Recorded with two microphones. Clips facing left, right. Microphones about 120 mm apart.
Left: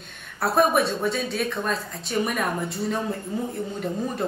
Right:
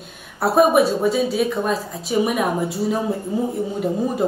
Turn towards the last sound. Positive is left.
turn(degrees=-10)  # may be behind; listen again after turning